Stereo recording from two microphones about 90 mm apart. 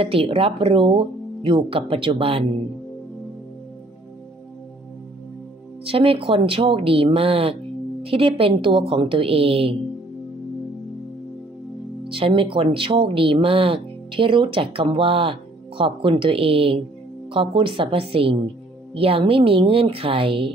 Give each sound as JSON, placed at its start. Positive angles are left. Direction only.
{"t": 0.0, "sound": "speech", "side_deg": -90}
{"t": 5.9, "sound": "speech", "side_deg": -90}
{"t": 12.0, "sound": "speech", "side_deg": -85}
{"t": 15.8, "sound": "speech", "side_deg": -75}
{"t": 17.3, "sound": "speech", "side_deg": -80}